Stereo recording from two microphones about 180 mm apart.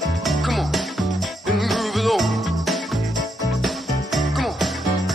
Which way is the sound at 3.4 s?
Centre (ahead or behind).